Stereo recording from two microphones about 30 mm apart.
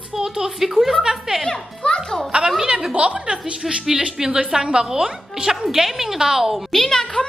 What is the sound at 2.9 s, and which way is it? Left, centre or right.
Speech, right.